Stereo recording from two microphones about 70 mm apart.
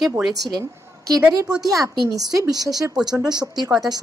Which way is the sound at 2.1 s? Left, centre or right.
Right.